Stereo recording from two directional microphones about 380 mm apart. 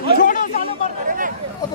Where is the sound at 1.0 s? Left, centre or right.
Right.